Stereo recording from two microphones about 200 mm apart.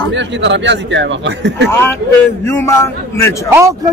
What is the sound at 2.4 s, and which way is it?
Speech, 10° left (ahead or behind).